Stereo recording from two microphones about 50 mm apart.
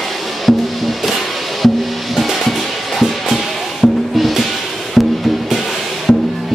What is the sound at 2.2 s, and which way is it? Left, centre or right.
Music, centre.